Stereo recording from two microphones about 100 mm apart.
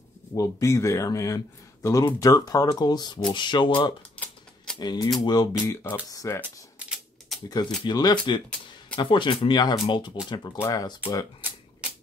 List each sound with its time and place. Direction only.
0.3 s speech: 35° left (ahead or behind); by 3.9 s 50° left (ahead or behind)
4.7 s speech: 40° left (ahead or behind)
6.4 s typewriter: 15° right (ahead or behind)
7.4 s speech: 40° left (ahead or behind)